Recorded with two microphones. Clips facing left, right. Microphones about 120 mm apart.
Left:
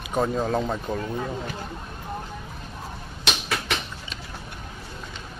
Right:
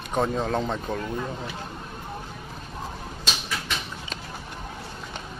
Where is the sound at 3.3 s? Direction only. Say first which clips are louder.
Left 4 dB; 65° left (ahead or behind).